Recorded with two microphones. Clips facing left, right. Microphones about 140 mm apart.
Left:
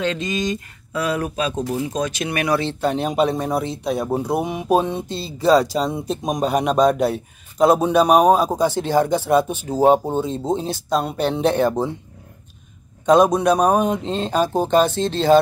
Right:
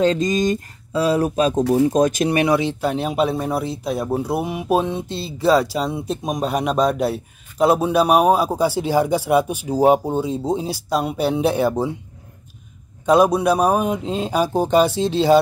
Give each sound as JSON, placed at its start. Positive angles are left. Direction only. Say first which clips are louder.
{"t": 0.0, "sound": "speech", "louder": "right 5 dB", "side_deg": -40}
{"t": 0.9, "sound": "speech", "louder": "right 5 dB", "side_deg": -30}
{"t": 2.3, "sound": "speech", "louder": "even", "side_deg": -25}
{"t": 2.6, "sound": "speech", "louder": "even", "side_deg": -5}
{"t": 13.0, "sound": "speech", "louder": "left 1 dB", "side_deg": -5}